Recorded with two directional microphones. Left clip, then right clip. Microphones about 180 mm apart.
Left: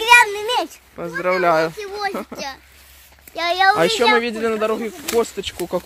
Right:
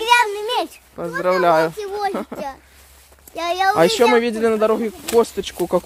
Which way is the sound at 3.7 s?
25° right (ahead or behind).